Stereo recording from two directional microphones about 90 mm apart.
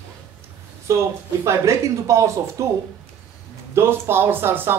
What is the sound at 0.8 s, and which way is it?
A man's voice, 30° right (ahead or behind).